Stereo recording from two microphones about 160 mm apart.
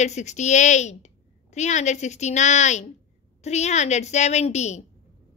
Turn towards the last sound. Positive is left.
turn(degrees=45)  # may be behind; listen again after turning